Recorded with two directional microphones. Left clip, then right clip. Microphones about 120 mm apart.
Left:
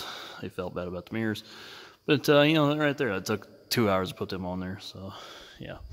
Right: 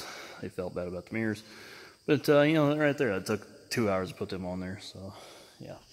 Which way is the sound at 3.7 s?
40° left (ahead or behind).